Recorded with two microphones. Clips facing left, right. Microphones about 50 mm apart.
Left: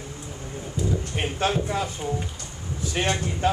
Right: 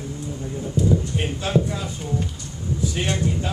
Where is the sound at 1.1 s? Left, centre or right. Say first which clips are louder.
Right 2 dB; left.